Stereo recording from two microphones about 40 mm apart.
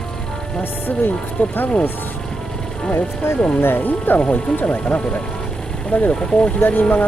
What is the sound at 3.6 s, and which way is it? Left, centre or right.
Speech, left.